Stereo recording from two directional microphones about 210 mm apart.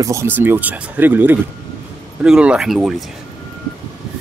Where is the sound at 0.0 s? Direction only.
15° right (ahead or behind).